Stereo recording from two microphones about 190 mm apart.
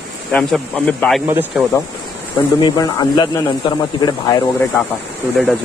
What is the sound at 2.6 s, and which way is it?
Speech, 25° left (ahead or behind).